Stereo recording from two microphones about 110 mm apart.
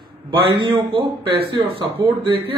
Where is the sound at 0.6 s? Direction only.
45° right (ahead or behind).